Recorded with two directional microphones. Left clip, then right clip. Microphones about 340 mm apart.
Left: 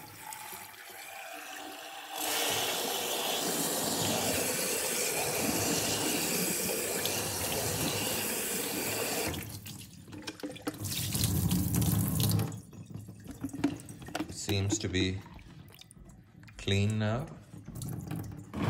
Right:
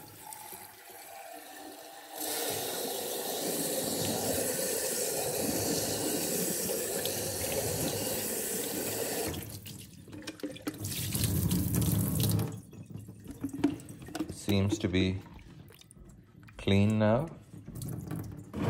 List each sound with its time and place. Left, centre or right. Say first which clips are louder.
0.3 s toilet flush: left 3 dB; centre
13.5 s water: right 2 dB; centre
14.3 s computer keyboard: right 4 dB; centre
14.8 s speech: right 1 dB; centre
16.6 s speech: right 5 dB; centre
17.7 s water tap: even; centre